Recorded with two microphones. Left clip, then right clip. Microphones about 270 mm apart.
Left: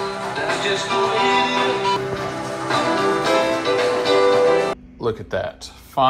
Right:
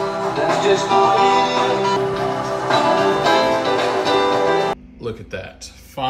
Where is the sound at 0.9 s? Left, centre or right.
Right.